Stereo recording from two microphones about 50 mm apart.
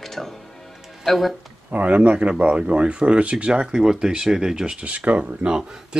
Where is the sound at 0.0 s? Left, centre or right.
Centre.